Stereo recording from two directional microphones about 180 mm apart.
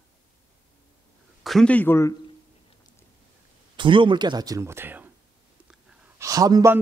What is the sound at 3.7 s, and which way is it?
Speech, 25° right (ahead or behind).